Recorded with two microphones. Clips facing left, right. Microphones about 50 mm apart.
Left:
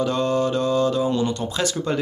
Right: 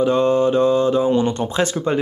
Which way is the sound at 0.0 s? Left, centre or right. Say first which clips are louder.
Right 5 dB; right.